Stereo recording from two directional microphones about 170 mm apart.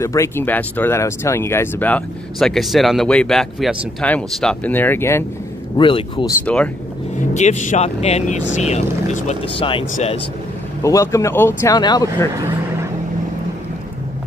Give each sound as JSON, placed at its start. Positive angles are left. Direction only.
{"t": 0.0, "sound": "speech", "side_deg": 15}
{"t": 5.8, "sound": "speech", "side_deg": 30}
{"t": 6.4, "sound": "speech", "side_deg": 10}
{"t": 7.2, "sound": "speech", "side_deg": 45}
{"t": 9.6, "sound": "speech", "side_deg": 30}
{"t": 10.8, "sound": "speech", "side_deg": 20}